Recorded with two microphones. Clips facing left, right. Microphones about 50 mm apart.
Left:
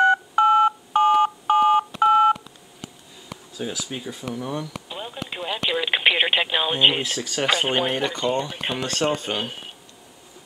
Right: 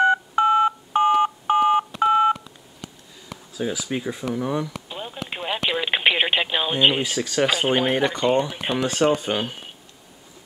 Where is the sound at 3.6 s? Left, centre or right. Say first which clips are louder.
Right 5 dB; centre.